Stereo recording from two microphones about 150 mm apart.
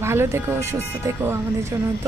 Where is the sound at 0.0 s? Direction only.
15° right (ahead or behind).